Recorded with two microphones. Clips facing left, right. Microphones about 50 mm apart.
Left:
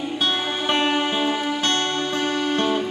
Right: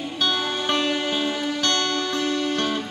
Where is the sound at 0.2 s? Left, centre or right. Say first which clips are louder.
Right 1 dB; left.